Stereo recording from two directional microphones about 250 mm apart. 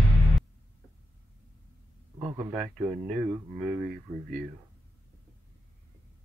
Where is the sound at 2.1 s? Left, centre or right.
Centre.